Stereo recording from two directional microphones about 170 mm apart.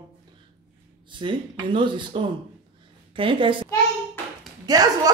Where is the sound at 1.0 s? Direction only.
30° right (ahead or behind).